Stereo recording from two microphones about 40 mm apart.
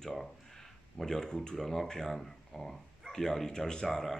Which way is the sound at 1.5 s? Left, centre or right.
Centre.